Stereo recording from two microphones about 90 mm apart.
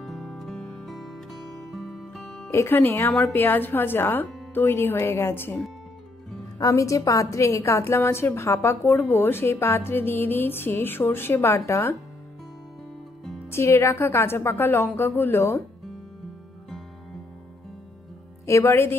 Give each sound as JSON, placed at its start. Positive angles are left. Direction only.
{"t": 0.0, "sound": "music", "side_deg": 0}
{"t": 2.5, "sound": "a woman's voice", "side_deg": 30}
{"t": 3.1, "sound": "a woman's voice", "side_deg": 5}
{"t": 3.3, "sound": "a woman's voice", "side_deg": 20}
{"t": 6.6, "sound": "a woman's voice", "side_deg": 35}
{"t": 13.5, "sound": "a woman's voice", "side_deg": 30}
{"t": 18.5, "sound": "a woman's voice", "side_deg": 30}